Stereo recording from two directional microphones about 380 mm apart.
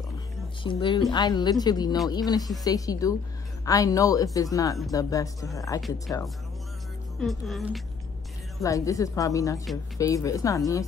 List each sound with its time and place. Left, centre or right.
0.7 s speech: centre